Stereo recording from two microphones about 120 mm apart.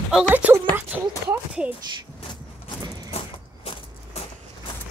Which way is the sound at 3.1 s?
55° left (ahead or behind).